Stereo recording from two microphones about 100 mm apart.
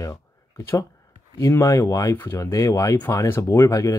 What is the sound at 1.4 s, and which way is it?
Speech, 30° left (ahead or behind).